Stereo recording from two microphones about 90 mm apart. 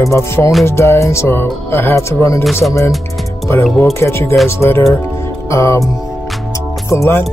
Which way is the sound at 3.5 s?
30° left (ahead or behind).